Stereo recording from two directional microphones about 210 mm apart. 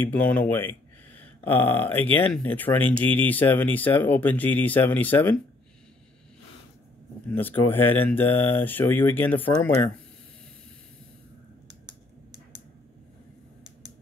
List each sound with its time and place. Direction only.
0.0 s speech: 10° left (ahead or behind)
7.3 s speech: 10° left (ahead or behind)
11.6 s computer keyboard: 60° right (ahead or behind)